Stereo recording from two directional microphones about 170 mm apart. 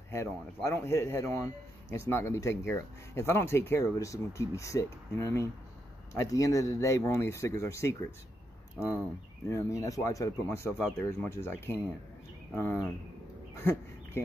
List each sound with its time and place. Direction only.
0.1 s speech: 15° left (ahead or behind)
9.5 s speech: 20° left (ahead or behind)
13.6 s a sound: 15° left (ahead or behind)